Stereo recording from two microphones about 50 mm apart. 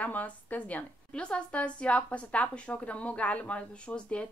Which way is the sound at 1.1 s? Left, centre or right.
Left.